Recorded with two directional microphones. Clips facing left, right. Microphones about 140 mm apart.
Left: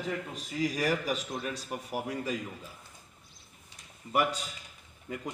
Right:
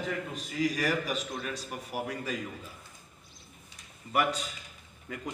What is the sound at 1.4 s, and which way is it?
Speech, 30° left (ahead or behind).